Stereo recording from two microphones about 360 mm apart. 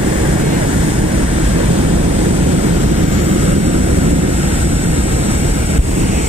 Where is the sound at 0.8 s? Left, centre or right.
Centre.